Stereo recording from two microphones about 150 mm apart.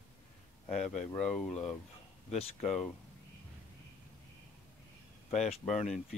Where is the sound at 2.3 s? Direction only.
40° left (ahead or behind).